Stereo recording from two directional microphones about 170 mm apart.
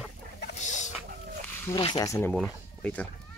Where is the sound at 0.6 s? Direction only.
45° left (ahead or behind).